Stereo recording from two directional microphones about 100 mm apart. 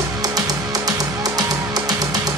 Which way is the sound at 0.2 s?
40° right (ahead or behind).